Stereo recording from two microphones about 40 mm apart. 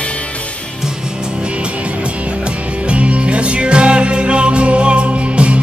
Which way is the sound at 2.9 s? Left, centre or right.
Right.